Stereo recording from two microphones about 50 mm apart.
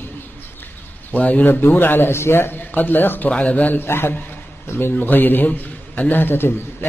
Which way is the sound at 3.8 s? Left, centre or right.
Left.